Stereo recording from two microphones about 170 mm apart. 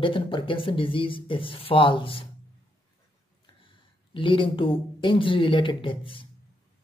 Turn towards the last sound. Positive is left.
turn(degrees=30)  # may be behind; listen again after turning